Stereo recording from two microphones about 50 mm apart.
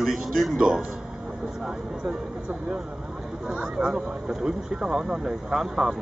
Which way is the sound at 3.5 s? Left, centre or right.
Centre.